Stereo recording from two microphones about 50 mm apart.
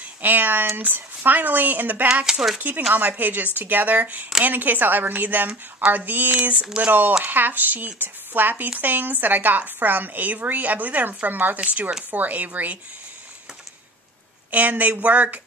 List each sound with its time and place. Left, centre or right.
0.0 s a woman's voice: right
14.5 s a woman's voice: right